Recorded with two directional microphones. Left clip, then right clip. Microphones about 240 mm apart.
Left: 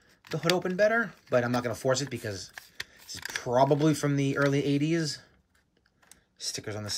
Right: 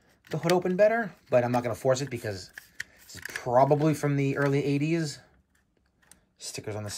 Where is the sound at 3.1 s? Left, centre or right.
Left.